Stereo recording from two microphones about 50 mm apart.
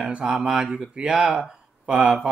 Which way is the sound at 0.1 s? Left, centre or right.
Right.